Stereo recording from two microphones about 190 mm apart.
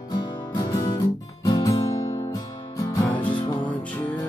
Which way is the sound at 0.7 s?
20° left (ahead or behind).